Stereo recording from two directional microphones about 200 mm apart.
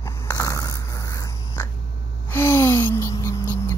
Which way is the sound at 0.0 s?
15° left (ahead or behind).